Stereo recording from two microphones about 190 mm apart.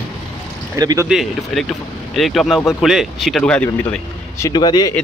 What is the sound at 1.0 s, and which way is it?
Speech, centre (ahead or behind).